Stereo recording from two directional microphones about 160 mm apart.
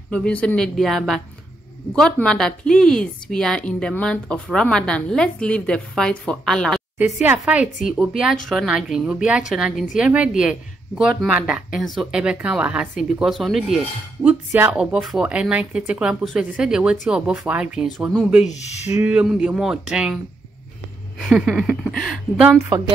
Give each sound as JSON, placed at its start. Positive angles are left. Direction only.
{"t": 0.1, "sound": "a woman's voice", "side_deg": 5}
{"t": 7.0, "sound": "a woman's voice", "side_deg": -10}
{"t": 18.4, "sound": "speech", "side_deg": 45}
{"t": 18.9, "sound": "a woman's voice", "side_deg": -10}
{"t": 21.2, "sound": "a woman's voice", "side_deg": -5}